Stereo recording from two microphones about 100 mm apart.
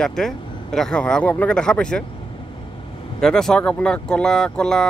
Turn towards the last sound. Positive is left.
turn(degrees=5)  # may be behind; listen again after turning